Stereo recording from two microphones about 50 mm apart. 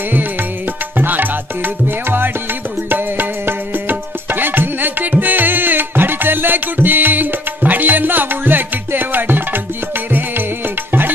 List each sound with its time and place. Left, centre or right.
0.9 s music: right